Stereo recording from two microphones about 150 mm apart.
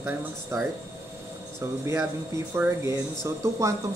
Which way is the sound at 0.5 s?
20° right (ahead or behind).